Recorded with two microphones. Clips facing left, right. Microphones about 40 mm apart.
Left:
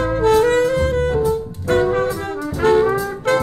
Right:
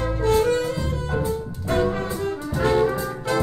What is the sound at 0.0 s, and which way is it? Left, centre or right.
Music, left.